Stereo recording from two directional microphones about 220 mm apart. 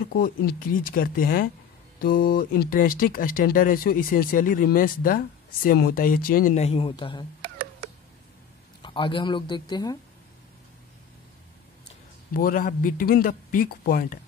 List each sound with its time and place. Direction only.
0.1 s speech: 40° left (ahead or behind); by 7.2 s 20° left (ahead or behind)
8.8 s a man's voice: 20° left (ahead or behind)
12.4 s speech: 40° left (ahead or behind)